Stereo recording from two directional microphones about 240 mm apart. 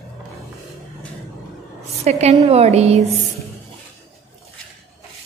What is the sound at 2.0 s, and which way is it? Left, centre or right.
Speech, right.